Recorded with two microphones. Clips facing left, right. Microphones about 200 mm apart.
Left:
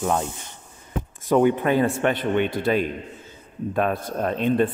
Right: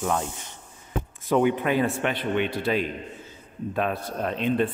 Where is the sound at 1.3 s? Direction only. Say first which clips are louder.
Left 3 dB; 45° left (ahead or behind).